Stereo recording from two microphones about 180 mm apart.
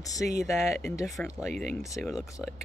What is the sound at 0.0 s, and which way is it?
Speech, 20° left (ahead or behind).